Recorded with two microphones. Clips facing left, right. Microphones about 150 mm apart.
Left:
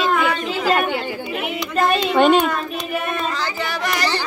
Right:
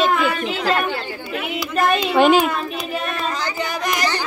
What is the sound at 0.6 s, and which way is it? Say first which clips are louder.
Speech: left 4 dB; 10° left (ahead or behind).